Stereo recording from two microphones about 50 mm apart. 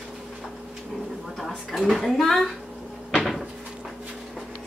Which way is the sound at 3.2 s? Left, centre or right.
Centre.